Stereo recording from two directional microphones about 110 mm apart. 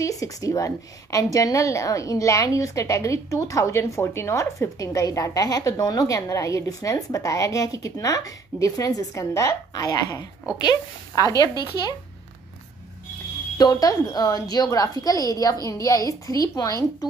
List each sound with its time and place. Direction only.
0.0 s a woman's voice: 30° left (ahead or behind)
13.6 s a woman's voice: 35° left (ahead or behind)